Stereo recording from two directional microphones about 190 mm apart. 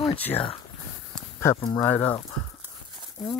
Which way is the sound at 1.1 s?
15° left (ahead or behind).